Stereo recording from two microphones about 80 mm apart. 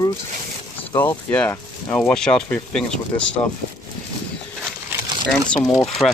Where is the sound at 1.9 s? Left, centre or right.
Centre.